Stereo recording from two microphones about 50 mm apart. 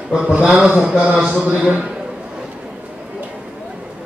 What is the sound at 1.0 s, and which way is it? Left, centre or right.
Speech, right.